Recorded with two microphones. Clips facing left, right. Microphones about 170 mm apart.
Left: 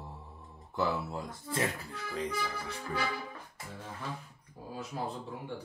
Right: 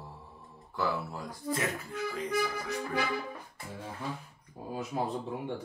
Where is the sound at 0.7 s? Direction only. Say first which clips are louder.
Left 1 dB; 25° left (ahead or behind).